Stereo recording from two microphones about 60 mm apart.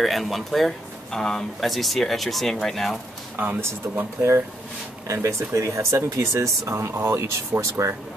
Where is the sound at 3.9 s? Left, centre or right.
Right.